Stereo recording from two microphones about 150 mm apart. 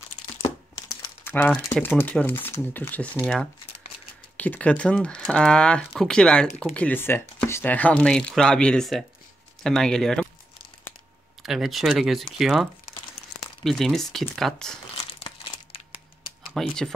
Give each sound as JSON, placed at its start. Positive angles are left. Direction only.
{"t": 0.7, "sound": "crumpling", "side_deg": 20}
{"t": 2.0, "sound": "speech", "side_deg": 10}
{"t": 4.4, "sound": "speech", "side_deg": 10}
{"t": 11.4, "sound": "speech", "side_deg": 0}
{"t": 13.7, "sound": "speech", "side_deg": 0}
{"t": 15.0, "sound": "crumpling", "side_deg": 35}
{"t": 16.5, "sound": "speech", "side_deg": 0}